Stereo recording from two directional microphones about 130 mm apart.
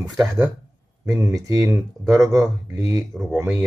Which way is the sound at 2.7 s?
30° right (ahead or behind).